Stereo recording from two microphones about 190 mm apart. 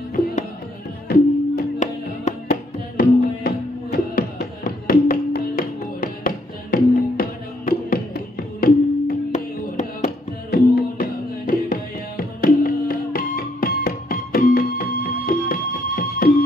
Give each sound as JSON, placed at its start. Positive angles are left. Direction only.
{"t": 1.0, "sound": "music", "side_deg": 55}